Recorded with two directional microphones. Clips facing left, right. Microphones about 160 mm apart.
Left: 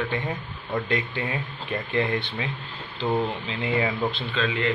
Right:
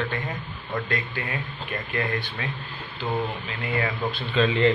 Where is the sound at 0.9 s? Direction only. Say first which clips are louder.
Left 3 dB; 25° left (ahead or behind).